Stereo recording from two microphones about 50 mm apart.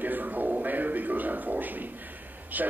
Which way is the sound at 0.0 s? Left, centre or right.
Right.